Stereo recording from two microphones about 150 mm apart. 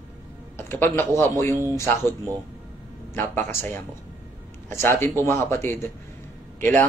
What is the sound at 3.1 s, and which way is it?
A man's voice, 15° left (ahead or behind).